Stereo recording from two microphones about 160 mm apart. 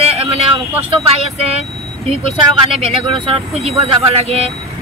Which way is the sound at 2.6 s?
40° right (ahead or behind).